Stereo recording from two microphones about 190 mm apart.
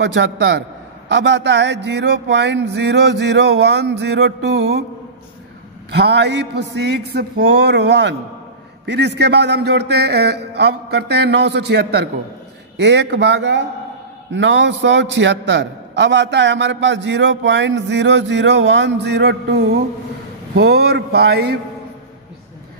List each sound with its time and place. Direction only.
0.0 s a man's voice: 70° right (ahead or behind)
1.1 s mantra: 70° right (ahead or behind)
5.9 s mantra: 60° right (ahead or behind)
12.7 s a man's voice: 65° right (ahead or behind)
20.5 s mantra: 60° right (ahead or behind)